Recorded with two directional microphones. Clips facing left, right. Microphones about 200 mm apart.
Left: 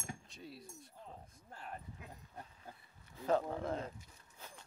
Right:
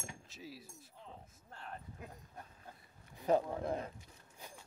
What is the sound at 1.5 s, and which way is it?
Speech, 10° left (ahead or behind).